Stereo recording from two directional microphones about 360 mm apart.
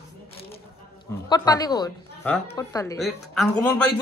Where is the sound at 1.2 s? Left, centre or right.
Centre.